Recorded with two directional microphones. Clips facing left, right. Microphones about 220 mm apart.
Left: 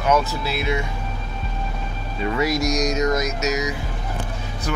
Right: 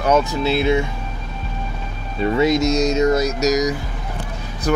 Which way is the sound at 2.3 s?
25° right (ahead or behind).